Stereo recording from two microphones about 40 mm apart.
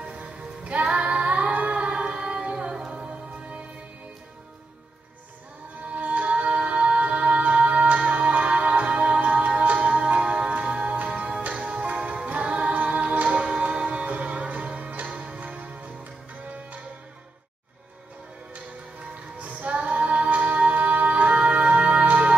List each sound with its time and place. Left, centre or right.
0.0 s music: right
5.9 s music: right
19.4 s music: right